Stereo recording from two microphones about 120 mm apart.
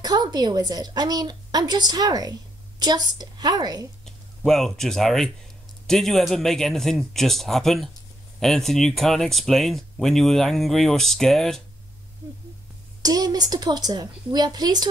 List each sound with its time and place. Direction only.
0.0 s a woman's voice: 35° right (ahead or behind)
4.0 s speech: 5° left (ahead or behind)
13.0 s a woman's voice: 30° right (ahead or behind)